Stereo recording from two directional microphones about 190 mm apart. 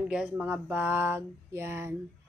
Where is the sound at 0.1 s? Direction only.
5° right (ahead or behind).